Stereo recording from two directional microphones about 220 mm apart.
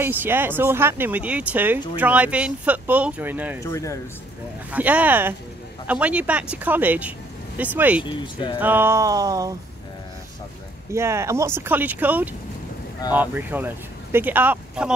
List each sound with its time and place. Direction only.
0.0 s speech: 10° right (ahead or behind)
3.6 s speech: 15° left (ahead or behind)
4.6 s speech: 5° right (ahead or behind)
8.0 s speech: 20° left (ahead or behind)
8.5 s speech: 10° right (ahead or behind)
10.9 s speech: 10° right (ahead or behind)